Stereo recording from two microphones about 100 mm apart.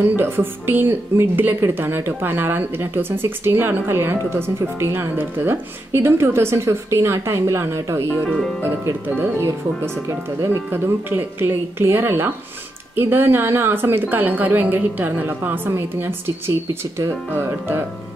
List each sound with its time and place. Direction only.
0.0 s a woman's voice: 20° right (ahead or behind)